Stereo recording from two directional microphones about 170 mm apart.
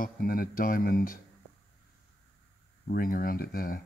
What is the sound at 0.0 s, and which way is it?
Speech, 55° left (ahead or behind).